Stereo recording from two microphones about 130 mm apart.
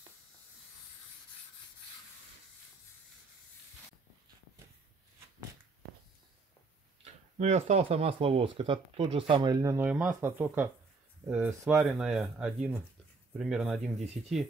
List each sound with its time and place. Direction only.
7.3 s speech: 60° right (ahead or behind); by 14.0 s centre (ahead or behind)